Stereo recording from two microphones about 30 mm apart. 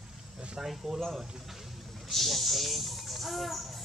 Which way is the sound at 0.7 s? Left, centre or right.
Centre.